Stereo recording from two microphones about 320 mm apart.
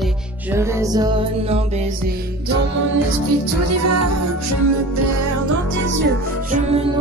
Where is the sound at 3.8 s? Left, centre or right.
Right.